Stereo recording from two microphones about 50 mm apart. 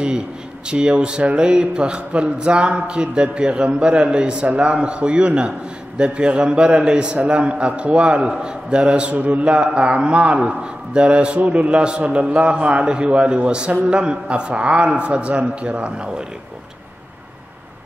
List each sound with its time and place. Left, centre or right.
0.7 s a man's voice: centre